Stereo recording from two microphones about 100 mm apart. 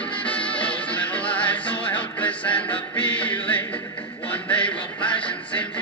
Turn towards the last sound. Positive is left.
turn(degrees=15)  # may be behind; listen again after turning